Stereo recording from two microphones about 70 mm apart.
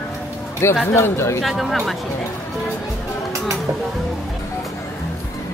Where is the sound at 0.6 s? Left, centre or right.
Left.